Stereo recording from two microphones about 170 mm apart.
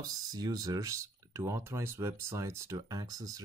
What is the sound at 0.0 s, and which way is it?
Speech, 20° right (ahead or behind).